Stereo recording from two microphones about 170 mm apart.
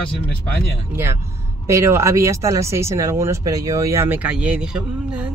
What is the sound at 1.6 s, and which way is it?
A man's voice, 15° right (ahead or behind).